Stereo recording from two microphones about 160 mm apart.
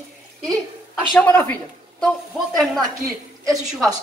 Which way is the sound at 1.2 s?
10° left (ahead or behind).